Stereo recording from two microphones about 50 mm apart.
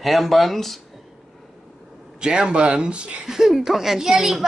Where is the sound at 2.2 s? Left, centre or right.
Centre.